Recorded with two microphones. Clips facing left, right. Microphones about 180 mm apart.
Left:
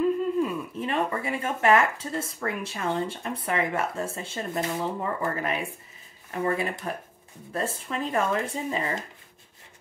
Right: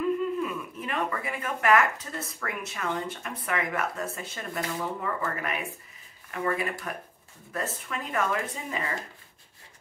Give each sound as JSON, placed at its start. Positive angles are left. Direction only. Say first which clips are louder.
{"t": 0.0, "sound": "speech", "louder": "left 3 dB", "side_deg": 30}